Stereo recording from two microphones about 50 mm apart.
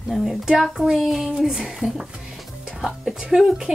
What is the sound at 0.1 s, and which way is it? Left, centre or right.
A child's voice, centre.